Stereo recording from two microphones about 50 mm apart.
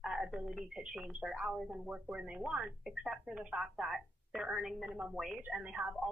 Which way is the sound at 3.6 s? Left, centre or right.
Centre.